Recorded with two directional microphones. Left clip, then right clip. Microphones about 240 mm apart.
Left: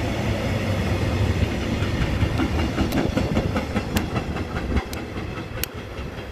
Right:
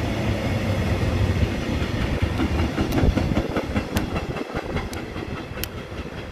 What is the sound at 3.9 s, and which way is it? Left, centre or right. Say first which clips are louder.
Train: even; left.